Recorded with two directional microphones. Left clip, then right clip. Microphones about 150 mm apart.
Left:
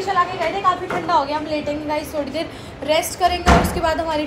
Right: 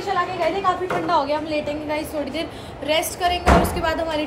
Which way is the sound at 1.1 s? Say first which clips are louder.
Left 3 dB; 15° right (ahead or behind).